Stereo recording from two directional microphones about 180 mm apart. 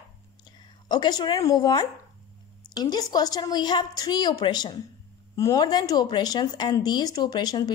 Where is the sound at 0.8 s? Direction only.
25° left (ahead or behind).